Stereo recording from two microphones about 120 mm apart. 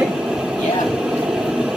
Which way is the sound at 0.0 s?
5° right (ahead or behind).